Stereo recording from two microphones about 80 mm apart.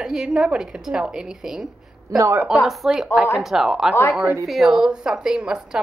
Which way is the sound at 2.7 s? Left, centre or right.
Centre.